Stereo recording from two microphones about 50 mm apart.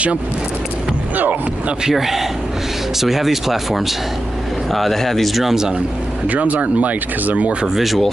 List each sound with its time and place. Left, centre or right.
1.9 s a man's voice: centre
6.2 s speech: right
7.6 s speech: centre